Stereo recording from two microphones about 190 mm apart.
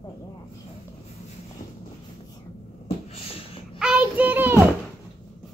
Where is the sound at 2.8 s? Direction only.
30° left (ahead or behind).